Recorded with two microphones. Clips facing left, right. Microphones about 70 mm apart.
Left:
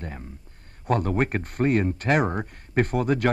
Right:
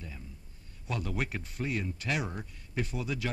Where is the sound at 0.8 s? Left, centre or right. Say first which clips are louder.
Left 12 dB; left.